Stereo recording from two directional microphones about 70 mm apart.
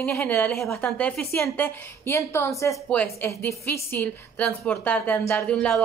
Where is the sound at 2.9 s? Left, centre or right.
Centre.